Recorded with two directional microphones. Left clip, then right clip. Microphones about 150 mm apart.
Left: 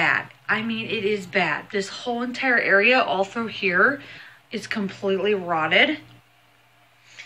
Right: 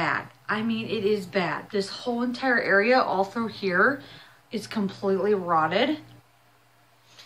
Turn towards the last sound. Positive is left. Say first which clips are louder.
# left 4 dB
turn(degrees=0)  # may be behind; listen again after turning